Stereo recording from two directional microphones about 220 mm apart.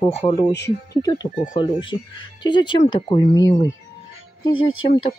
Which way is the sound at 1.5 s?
20° left (ahead or behind).